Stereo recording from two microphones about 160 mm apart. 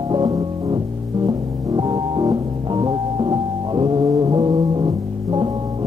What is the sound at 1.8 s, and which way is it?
Music, 25° right (ahead or behind).